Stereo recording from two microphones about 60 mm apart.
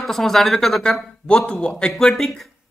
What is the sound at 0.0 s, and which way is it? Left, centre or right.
Speech, centre.